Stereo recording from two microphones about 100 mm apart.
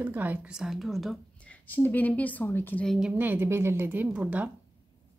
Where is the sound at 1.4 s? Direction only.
15° left (ahead or behind).